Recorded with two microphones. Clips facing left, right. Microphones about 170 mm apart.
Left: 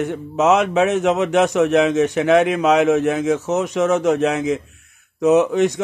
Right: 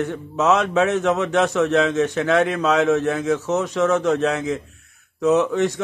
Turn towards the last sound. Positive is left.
turn(degrees=20)  # may be behind; listen again after turning